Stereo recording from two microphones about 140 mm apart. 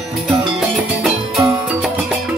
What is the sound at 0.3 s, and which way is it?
Music, 5° right (ahead or behind).